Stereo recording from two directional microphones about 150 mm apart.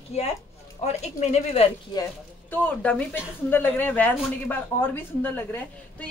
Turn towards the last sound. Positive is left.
turn(degrees=15)  # may be behind; listen again after turning